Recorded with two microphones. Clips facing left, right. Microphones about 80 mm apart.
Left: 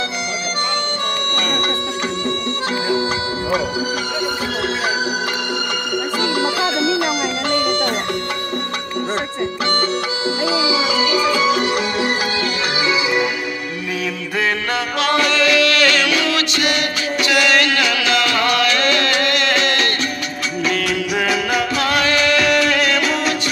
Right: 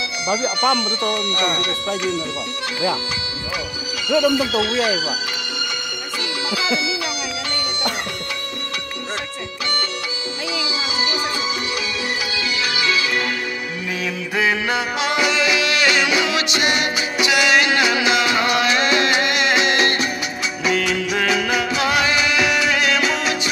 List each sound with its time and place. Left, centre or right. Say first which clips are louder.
4.3 s speech: right 2 dB; left
6.4 s music: even; left
10.4 s speech: left 6 dB; left
12.8 s music: left 4 dB; centre
14.4 s music: right 1 dB; centre
20.6 s music: right 1 dB; centre